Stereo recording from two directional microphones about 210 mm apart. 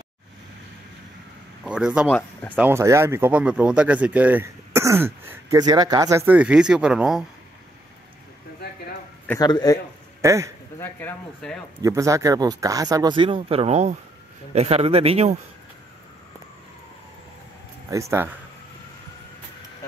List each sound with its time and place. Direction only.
1.6 s speech: 5° right (ahead or behind)
2.0 s speech: 5° left (ahead or behind)
2.5 s speech: 10° right (ahead or behind)
9.3 s a man's voice: 20° left (ahead or behind)
10.2 s speech: 15° right (ahead or behind)
10.8 s speech: 10° left (ahead or behind)
11.8 s speech: 15° right (ahead or behind)
17.8 s speech: 15° right (ahead or behind)